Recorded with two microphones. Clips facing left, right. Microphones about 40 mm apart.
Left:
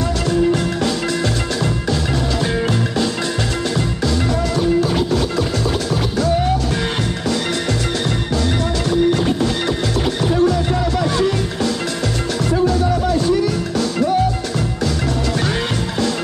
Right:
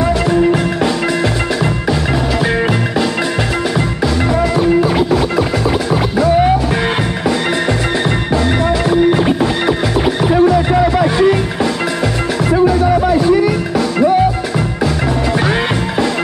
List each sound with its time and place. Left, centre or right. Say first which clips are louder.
4.6 s music: right 3 dB; centre
8.9 s music: right 3 dB; right